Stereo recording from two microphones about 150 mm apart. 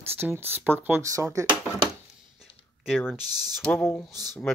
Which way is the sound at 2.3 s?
Centre (ahead or behind).